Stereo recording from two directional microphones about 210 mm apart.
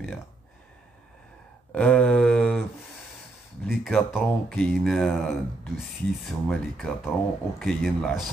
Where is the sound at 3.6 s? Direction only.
Centre (ahead or behind).